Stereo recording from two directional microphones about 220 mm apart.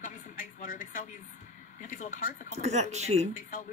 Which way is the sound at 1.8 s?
35° left (ahead or behind).